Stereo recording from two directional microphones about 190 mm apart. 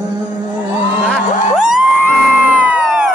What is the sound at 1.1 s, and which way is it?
Music, 5° right (ahead or behind).